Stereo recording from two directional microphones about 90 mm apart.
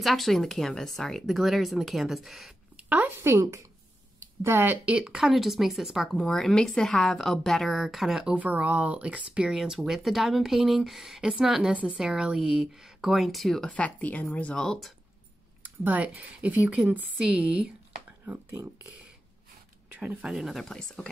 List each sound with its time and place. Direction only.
0.0 s a woman's voice: centre (ahead or behind)
2.9 s speech: 20° right (ahead or behind)
5.2 s a woman's voice: 5° right (ahead or behind)
6.2 s a woman's voice: 5° left (ahead or behind)
15.6 s a woman's voice: 20° right (ahead or behind)
18.2 s speech: 20° right (ahead or behind)
19.9 s speech: 15° right (ahead or behind)
20.2 s a woman's voice: centre (ahead or behind)